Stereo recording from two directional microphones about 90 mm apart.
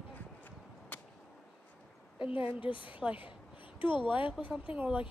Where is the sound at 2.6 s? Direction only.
70° left (ahead or behind).